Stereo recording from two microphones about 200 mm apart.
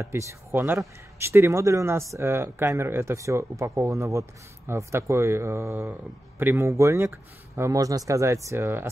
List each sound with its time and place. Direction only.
0.3 s speech: 10° right (ahead or behind)